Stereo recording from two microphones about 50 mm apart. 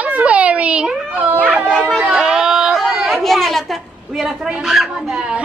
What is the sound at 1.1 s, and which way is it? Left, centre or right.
Speech, right.